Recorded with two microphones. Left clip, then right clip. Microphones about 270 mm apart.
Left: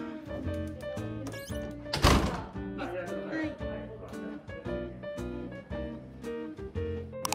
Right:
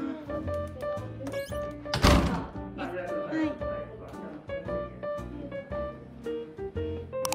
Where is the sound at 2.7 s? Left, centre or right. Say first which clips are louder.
Right 3 dB; centre.